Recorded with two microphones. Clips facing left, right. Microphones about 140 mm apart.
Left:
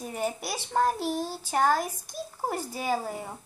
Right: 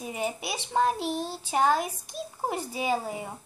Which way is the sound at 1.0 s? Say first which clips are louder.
Left 1 dB; 10° left (ahead or behind).